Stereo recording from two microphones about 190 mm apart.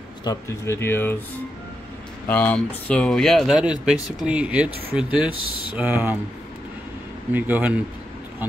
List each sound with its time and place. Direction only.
0.2 s speech: 15° left (ahead or behind)
2.2 s speech: 5° left (ahead or behind); by 6.1 s 10° right (ahead or behind)
7.3 s speech: 10° right (ahead or behind)